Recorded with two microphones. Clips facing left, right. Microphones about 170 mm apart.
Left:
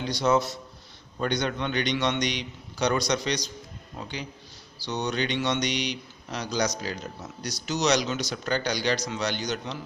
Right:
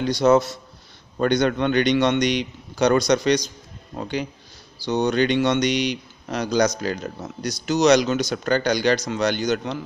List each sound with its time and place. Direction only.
0.0 s speech: 50° right (ahead or behind)